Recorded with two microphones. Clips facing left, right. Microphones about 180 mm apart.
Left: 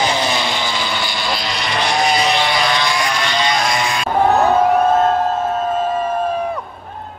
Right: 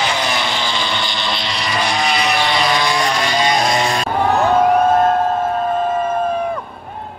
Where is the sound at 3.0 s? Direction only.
40° right (ahead or behind).